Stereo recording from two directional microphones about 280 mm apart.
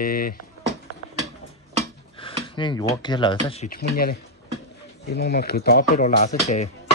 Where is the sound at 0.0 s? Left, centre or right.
Left.